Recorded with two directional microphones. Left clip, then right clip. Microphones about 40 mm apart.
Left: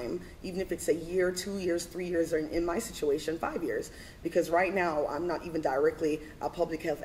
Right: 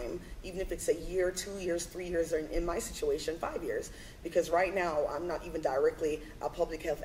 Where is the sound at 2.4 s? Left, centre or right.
Centre.